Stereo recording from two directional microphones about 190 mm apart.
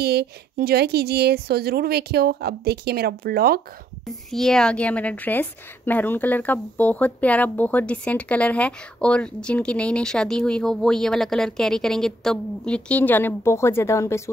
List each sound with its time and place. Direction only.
0.0 s a woman's voice: 55° right (ahead or behind)
4.3 s a woman's voice: centre (ahead or behind)